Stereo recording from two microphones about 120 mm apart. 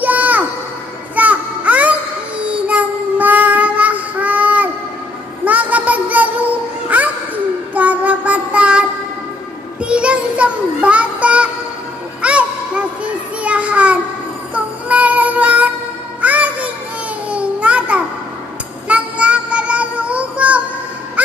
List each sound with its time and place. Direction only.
0.0 s music: 15° right (ahead or behind)
1.1 s child singing: 15° right (ahead or behind)
5.4 s a sound: 15° right (ahead or behind)
7.7 s child singing: 15° right (ahead or behind)
9.8 s music: 10° right (ahead or behind)
12.2 s a sound: 10° right (ahead or behind)
14.5 s child singing: 10° right (ahead or behind)
16.2 s music: 10° right (ahead or behind)
17.3 s a sound: 10° right (ahead or behind)
18.9 s child singing: 10° right (ahead or behind)